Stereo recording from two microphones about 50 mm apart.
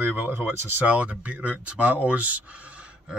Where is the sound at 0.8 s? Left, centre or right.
Right.